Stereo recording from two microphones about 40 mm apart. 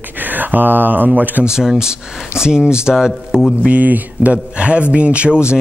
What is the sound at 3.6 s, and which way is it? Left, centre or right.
Speech, right.